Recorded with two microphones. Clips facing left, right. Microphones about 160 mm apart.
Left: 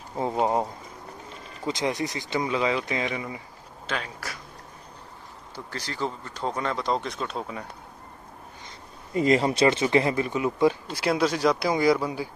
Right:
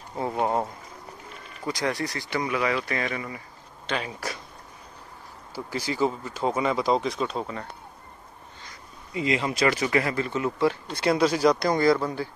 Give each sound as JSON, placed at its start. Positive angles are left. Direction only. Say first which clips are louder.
{"t": 0.1, "sound": "a sound", "louder": "left 1 dB", "side_deg": 15}
{"t": 1.7, "sound": "speech", "louder": "left 1 dB", "side_deg": 20}
{"t": 3.9, "sound": "speech", "louder": "right 2 dB", "side_deg": 5}
{"t": 5.5, "sound": "speech", "louder": "right 6 dB", "side_deg": -10}
{"t": 9.1, "sound": "speech", "louder": "left 5 dB", "side_deg": 45}
{"t": 11.0, "sound": "speech", "louder": "right 5 dB", "side_deg": 0}